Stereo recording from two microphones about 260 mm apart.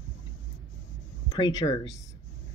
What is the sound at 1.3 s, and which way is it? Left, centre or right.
Speech, centre.